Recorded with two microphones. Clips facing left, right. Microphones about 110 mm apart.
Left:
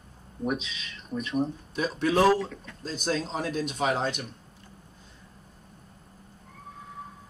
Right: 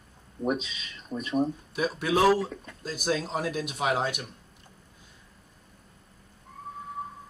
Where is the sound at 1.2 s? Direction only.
Centre (ahead or behind).